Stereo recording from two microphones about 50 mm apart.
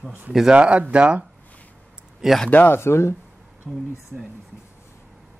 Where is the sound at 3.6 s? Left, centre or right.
Centre.